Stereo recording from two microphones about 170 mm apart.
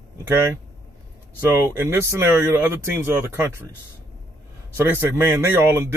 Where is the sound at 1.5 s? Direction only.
15° right (ahead or behind).